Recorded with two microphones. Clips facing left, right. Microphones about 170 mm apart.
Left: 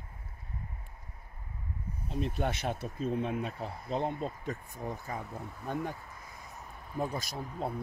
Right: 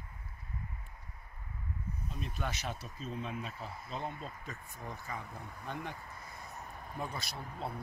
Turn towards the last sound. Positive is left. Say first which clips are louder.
# left 5 dB
turn(degrees=45)  # may be behind; listen again after turning